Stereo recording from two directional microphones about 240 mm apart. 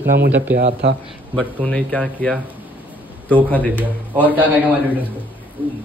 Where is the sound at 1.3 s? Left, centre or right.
Centre.